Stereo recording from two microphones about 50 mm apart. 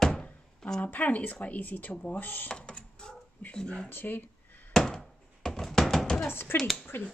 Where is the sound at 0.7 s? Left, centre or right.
Left.